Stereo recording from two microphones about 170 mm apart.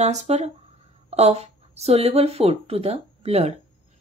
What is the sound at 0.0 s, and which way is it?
A woman's voice, 40° right (ahead or behind).